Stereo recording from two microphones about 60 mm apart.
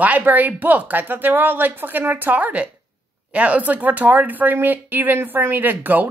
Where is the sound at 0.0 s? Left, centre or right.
Right.